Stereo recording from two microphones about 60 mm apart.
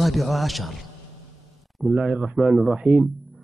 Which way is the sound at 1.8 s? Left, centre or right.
Centre.